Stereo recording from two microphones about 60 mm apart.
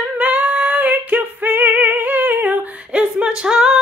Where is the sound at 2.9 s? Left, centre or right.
Centre.